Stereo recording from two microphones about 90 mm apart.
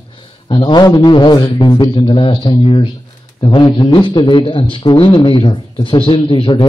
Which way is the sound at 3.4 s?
55° left (ahead or behind).